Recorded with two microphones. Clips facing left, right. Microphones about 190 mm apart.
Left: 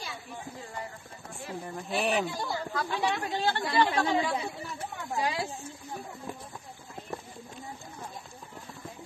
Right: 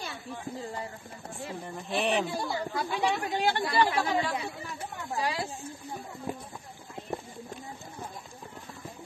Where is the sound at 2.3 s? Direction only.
15° right (ahead or behind).